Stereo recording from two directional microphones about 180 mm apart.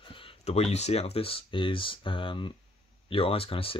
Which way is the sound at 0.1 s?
30° left (ahead or behind).